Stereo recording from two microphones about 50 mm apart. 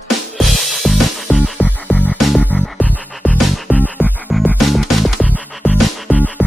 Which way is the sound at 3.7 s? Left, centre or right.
Left.